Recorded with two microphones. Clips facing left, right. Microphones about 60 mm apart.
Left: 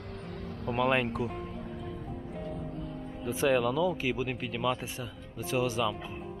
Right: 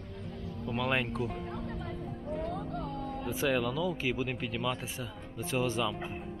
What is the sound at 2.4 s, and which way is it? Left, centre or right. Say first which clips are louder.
Music: right 3 dB; right.